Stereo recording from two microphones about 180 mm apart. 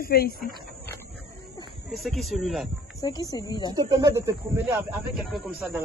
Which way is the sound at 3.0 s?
20° left (ahead or behind).